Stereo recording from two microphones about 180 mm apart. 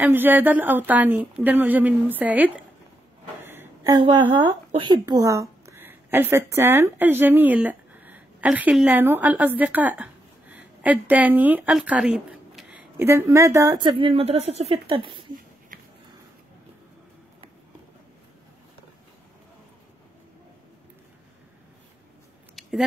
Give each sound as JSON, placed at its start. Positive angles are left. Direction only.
{"t": 0.0, "sound": "speech", "side_deg": -10}
{"t": 3.4, "sound": "a sound", "side_deg": -15}
{"t": 4.0, "sound": "a woman's voice", "side_deg": -25}
{"t": 22.6, "sound": "keys jangling", "side_deg": 0}